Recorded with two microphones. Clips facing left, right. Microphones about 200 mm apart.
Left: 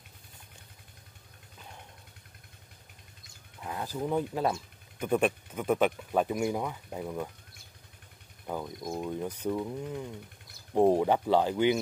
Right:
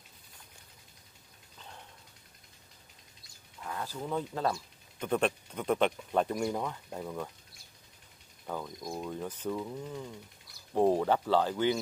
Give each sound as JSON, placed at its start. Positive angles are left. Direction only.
{"t": 3.6, "sound": "speech", "side_deg": 20}
{"t": 8.5, "sound": "speech", "side_deg": 15}